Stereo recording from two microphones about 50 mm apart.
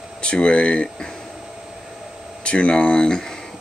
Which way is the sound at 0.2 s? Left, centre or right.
Centre.